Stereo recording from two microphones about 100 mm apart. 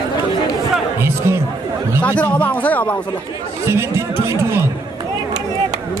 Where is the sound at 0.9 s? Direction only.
25° right (ahead or behind).